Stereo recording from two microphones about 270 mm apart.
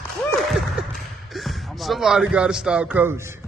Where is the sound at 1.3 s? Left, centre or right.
Centre.